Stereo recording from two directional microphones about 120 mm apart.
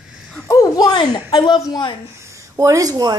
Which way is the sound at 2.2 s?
25° right (ahead or behind).